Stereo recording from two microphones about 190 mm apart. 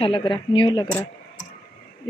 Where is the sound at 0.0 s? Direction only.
25° left (ahead or behind).